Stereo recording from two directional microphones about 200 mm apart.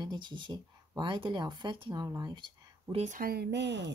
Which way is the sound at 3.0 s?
45° right (ahead or behind).